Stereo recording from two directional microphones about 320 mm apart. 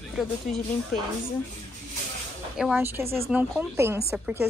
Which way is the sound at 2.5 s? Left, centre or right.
Centre.